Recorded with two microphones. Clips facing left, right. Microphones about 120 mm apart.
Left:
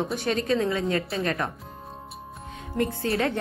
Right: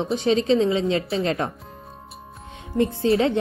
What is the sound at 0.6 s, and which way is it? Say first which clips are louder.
Speech: right 4 dB; 25° right (ahead or behind).